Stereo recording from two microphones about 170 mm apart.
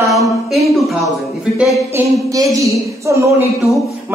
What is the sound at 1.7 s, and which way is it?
Speech, 20° right (ahead or behind).